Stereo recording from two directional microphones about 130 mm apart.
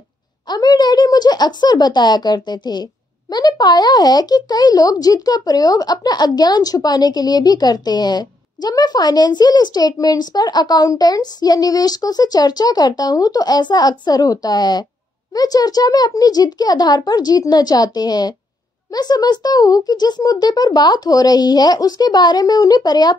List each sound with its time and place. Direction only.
0.5 s speech: 30° left (ahead or behind)